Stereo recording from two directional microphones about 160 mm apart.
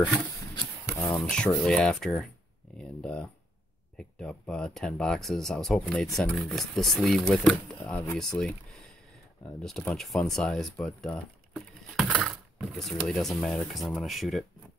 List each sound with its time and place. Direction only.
1.0 s speech: 5° left (ahead or behind)